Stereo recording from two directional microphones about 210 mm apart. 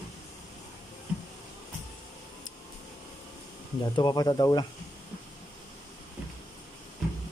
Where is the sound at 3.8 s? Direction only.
20° left (ahead or behind).